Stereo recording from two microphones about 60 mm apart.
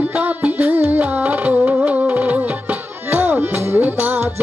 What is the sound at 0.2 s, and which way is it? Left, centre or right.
Music, right.